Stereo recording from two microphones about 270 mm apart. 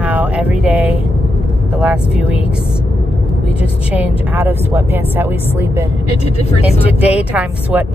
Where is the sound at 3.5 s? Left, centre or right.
Centre.